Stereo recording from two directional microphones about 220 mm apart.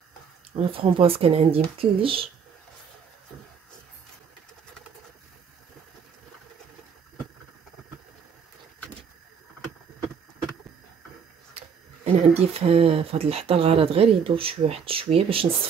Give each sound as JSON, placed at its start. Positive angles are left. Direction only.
{"t": 0.6, "sound": "speech", "side_deg": -25}
{"t": 11.5, "sound": "speech", "side_deg": -25}